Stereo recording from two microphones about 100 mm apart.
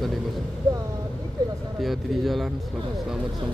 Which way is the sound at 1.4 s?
40° right (ahead or behind).